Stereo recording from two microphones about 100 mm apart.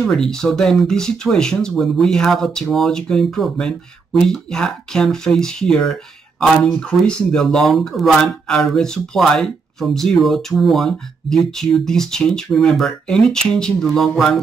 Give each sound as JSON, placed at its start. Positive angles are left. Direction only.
{"t": 0.0, "sound": "speech", "side_deg": 5}